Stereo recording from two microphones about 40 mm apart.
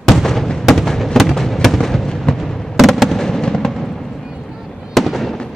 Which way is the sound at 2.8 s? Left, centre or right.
Centre.